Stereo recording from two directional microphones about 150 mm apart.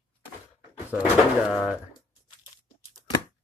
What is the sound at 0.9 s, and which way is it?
Speech, 10° right (ahead or behind).